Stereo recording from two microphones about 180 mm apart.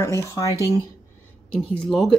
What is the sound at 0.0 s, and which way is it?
Speech, 15° left (ahead or behind).